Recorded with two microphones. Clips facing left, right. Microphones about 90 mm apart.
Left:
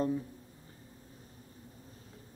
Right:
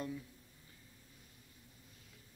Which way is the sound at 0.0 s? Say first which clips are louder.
Left 11 dB; 40° left (ahead or behind).